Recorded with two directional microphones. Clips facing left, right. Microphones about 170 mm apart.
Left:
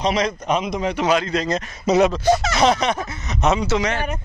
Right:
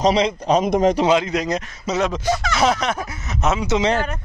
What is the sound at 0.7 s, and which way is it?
Speech, 45° right (ahead or behind).